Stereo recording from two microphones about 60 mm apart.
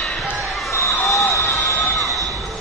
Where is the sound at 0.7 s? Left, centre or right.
Left.